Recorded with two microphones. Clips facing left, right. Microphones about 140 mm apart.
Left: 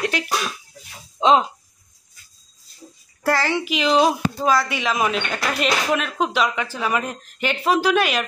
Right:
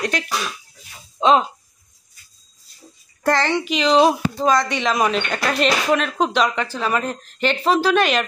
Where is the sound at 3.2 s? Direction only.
5° left (ahead or behind).